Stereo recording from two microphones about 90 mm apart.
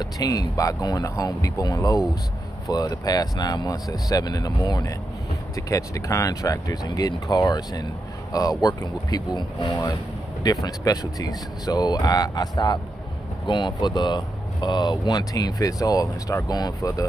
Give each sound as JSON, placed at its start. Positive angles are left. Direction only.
{"t": 0.0, "sound": "speech", "side_deg": 45}
{"t": 5.7, "sound": "speech", "side_deg": 40}
{"t": 13.5, "sound": "speech", "side_deg": 60}